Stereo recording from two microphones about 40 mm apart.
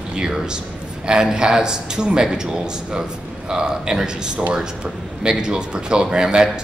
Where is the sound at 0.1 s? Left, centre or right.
Centre.